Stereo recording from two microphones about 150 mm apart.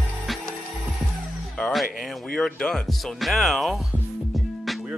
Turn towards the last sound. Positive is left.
turn(degrees=0)  # may be behind; listen again after turning